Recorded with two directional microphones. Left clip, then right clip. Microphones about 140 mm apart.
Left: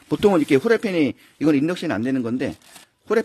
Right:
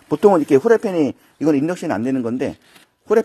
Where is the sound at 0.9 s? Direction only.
30° left (ahead or behind).